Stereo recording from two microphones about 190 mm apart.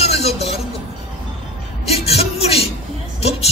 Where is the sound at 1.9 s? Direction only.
30° left (ahead or behind).